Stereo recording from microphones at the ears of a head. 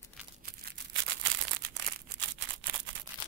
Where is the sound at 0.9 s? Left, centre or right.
Right.